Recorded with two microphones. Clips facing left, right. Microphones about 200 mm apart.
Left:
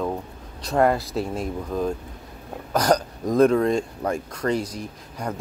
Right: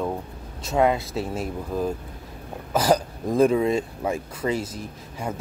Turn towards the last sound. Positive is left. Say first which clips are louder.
# even
turn(degrees=-5)  # may be behind; listen again after turning